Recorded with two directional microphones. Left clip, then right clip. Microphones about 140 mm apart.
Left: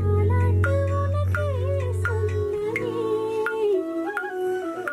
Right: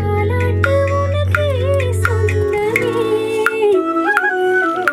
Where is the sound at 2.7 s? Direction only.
15° right (ahead or behind).